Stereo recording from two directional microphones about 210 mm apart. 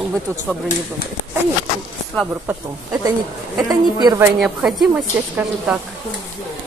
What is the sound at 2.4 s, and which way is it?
A woman's voice, 15° right (ahead or behind).